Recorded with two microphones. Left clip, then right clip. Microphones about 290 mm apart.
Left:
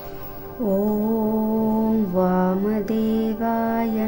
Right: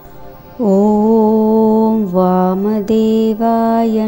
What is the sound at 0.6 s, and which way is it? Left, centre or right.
Music, centre.